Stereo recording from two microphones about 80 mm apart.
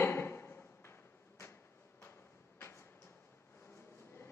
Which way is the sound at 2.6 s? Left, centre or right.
Left.